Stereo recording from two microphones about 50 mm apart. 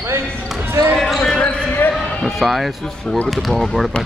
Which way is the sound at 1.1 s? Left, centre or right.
Centre.